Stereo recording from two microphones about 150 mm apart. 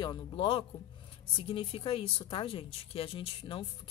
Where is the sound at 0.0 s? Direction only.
30° left (ahead or behind).